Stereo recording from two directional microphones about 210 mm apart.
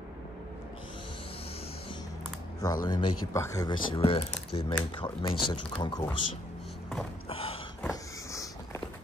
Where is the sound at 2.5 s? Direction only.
15° left (ahead or behind).